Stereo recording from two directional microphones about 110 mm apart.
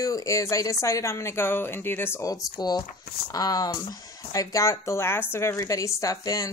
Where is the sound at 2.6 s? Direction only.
40° left (ahead or behind).